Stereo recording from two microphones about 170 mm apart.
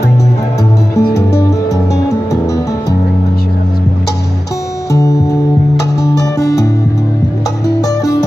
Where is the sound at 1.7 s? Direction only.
20° left (ahead or behind).